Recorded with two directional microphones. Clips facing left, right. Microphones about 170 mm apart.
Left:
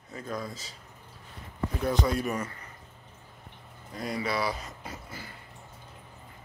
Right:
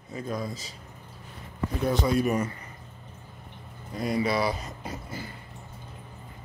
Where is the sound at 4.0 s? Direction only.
15° right (ahead or behind).